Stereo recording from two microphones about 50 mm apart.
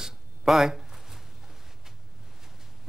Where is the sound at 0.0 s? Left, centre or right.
Centre.